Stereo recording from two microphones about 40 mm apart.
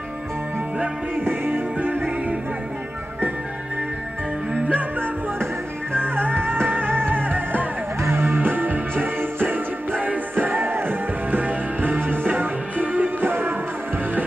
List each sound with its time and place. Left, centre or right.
1.1 s music: right
4.6 s music: right
6.1 s music: right
8.1 s music: right
8.9 s music: right
13.3 s music: right